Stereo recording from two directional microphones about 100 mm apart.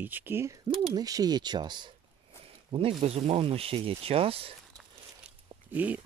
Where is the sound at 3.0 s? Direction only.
90° right; by 4.5 s 70° right (ahead or behind).